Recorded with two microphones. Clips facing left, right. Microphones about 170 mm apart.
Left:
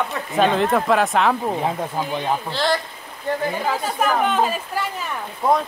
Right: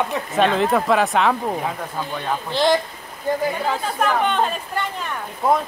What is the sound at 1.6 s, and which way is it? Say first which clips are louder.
Speech: left 3 dB; 15° left (ahead or behind).